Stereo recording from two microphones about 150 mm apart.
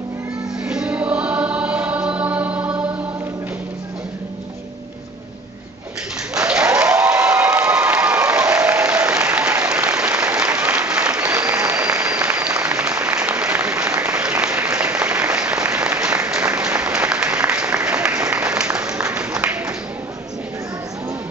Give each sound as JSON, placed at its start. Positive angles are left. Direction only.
{"t": 0.7, "sound": "choir", "side_deg": -5}
{"t": 6.3, "sound": "applause", "side_deg": -5}
{"t": 11.2, "sound": "applause", "side_deg": -20}